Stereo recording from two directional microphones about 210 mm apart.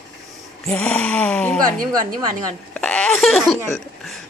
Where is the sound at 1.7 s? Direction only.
40° right (ahead or behind).